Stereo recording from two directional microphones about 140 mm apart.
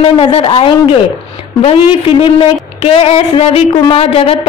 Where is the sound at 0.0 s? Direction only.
40° left (ahead or behind).